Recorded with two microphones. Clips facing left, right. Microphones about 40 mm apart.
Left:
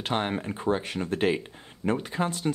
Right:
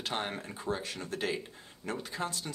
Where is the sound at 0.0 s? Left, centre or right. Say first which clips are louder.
Left 7 dB; left.